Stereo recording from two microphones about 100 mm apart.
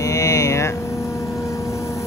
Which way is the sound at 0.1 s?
35° left (ahead or behind).